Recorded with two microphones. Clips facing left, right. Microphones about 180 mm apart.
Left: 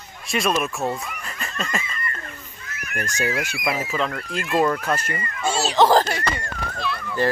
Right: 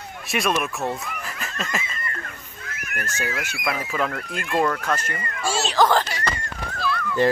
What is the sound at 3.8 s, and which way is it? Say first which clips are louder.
Speech: even; 5° right (ahead or behind).